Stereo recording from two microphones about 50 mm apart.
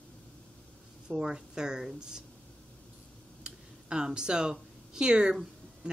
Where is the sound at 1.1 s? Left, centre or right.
Centre.